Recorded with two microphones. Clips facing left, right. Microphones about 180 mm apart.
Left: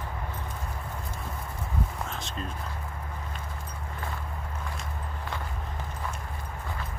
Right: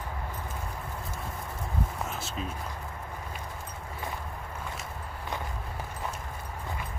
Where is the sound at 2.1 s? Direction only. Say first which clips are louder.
Right 1 dB; 5° right (ahead or behind).